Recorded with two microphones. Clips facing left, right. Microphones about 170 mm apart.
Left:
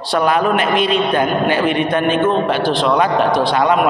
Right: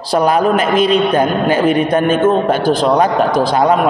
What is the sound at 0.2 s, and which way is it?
A man's voice, 40° right (ahead or behind).